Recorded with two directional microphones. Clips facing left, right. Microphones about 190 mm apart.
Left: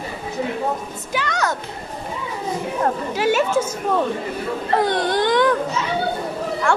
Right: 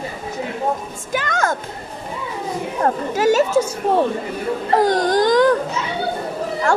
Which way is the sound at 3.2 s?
40° right (ahead or behind).